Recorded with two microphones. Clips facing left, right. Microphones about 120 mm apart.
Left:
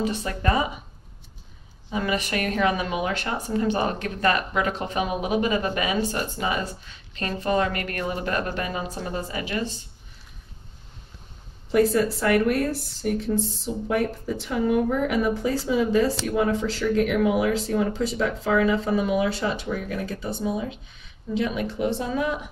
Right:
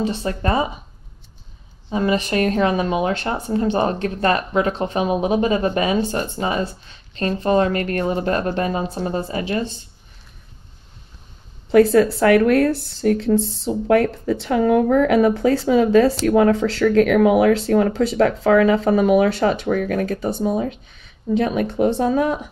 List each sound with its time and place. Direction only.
0.0 s a woman's voice: 30° right (ahead or behind)
1.9 s a woman's voice: 30° right (ahead or behind)
11.7 s speech: 70° right (ahead or behind); by 22.4 s 45° right (ahead or behind)